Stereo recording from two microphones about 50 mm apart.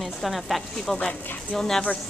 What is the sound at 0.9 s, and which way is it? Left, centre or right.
Speech, left.